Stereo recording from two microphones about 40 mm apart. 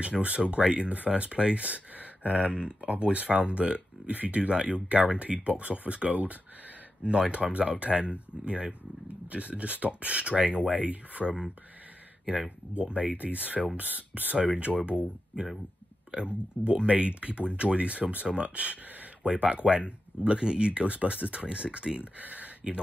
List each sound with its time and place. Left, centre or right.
0.0 s speech: right
9.3 s speech: right
11.2 s speech: centre
12.8 s speech: right
14.3 s speech: right
16.6 s speech: right
22.2 s speech: right